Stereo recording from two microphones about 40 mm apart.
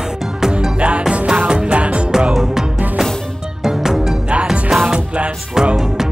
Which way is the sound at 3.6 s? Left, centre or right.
Centre.